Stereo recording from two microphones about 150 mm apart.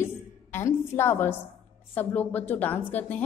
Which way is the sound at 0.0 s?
15° left (ahead or behind).